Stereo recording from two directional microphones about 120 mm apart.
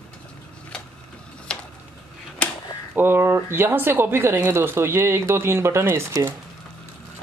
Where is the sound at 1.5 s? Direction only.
5° left (ahead or behind).